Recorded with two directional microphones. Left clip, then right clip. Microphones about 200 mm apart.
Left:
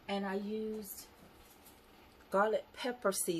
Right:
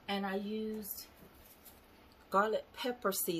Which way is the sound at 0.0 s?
20° right (ahead or behind).